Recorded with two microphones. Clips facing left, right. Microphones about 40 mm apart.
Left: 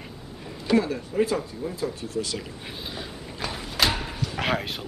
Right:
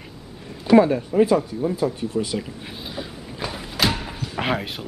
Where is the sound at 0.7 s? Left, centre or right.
Right.